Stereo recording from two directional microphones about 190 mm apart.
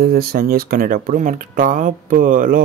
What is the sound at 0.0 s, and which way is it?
Speech, 50° right (ahead or behind).